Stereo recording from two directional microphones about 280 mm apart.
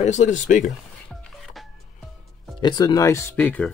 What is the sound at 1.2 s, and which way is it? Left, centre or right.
Music, centre.